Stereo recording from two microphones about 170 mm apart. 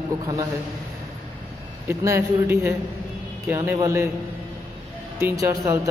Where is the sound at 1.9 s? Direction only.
15° right (ahead or behind).